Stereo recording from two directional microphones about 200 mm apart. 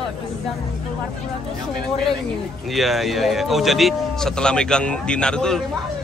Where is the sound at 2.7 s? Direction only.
Centre (ahead or behind).